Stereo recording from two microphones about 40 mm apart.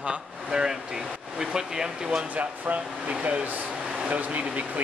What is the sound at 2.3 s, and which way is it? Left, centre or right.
Speech, right.